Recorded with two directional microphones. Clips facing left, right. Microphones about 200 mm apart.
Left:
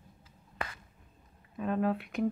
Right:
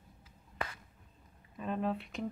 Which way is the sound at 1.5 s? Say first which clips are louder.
Left 5 dB; centre (ahead or behind).